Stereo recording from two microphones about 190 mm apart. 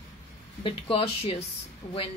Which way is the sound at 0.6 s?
30° left (ahead or behind).